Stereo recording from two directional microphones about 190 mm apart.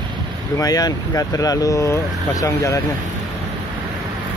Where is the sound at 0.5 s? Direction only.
20° left (ahead or behind).